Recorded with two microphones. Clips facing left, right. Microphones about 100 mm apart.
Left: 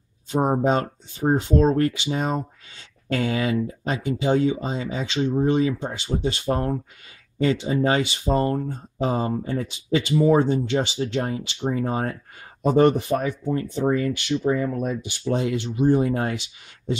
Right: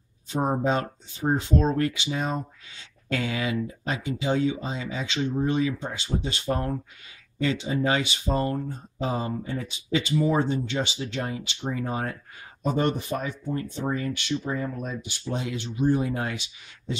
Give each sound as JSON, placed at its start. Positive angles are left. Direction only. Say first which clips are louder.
{"t": 0.4, "sound": "speech", "louder": "left 4 dB", "side_deg": 25}
{"t": 12.6, "sound": "speech", "louder": "left 8 dB", "side_deg": 65}
{"t": 14.8, "sound": "speech", "louder": "left 7 dB", "side_deg": 60}